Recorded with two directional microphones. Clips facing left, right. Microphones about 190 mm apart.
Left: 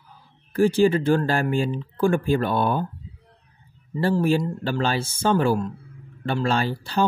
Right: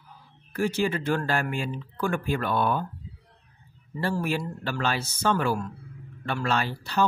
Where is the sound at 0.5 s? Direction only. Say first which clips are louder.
Left 8 dB; 30° left (ahead or behind).